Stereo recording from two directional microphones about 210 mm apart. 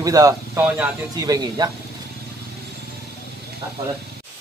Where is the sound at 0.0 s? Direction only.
15° right (ahead or behind).